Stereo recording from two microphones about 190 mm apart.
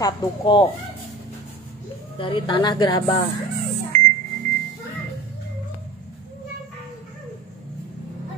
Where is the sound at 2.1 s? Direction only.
25° left (ahead or behind).